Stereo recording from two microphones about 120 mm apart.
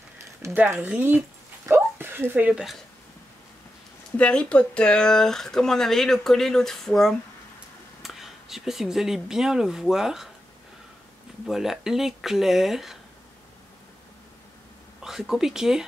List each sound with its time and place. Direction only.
0.4 s speech: 25° right (ahead or behind)
0.7 s speech: 15° right (ahead or behind)
4.2 s speech: 10° left (ahead or behind)
11.4 s speech: 5° right (ahead or behind)
15.0 s speech: 5° right (ahead or behind)